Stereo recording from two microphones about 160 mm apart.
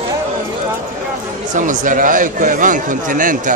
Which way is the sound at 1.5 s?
55° right (ahead or behind).